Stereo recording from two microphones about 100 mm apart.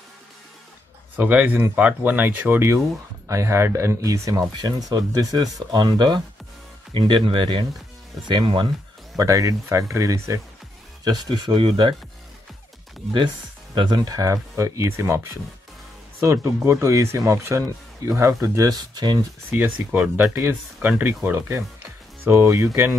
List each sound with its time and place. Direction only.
1.1 s speech: 15° right (ahead or behind); by 8.6 s 55° right (ahead or behind)
9.1 s speech: 35° right (ahead or behind)
11.1 s speech: 50° right (ahead or behind)
13.7 s speech: 50° right (ahead or behind)
19.5 s speech: 15° right (ahead or behind)